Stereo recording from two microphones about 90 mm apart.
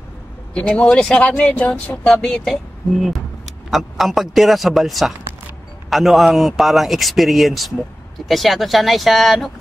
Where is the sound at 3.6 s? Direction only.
Centre (ahead or behind).